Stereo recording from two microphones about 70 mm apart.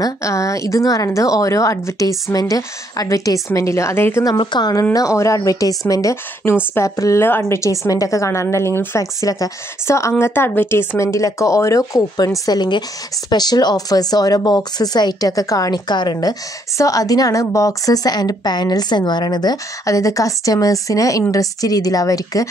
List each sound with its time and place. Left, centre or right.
0.2 s speech: left
2.3 s a woman's voice: left
3.4 s speech: left
4.2 s a woman's voice: left
4.9 s speech: left
6.4 s a woman's voice: left
7.4 s speech: left
10.2 s speech: left
12.4 s a woman's voice: left
15.7 s a woman's voice: left
16.7 s a woman's voice: left
19.9 s a woman's voice: left